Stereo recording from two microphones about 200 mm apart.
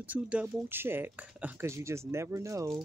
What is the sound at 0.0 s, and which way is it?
Speech, 5° right (ahead or behind).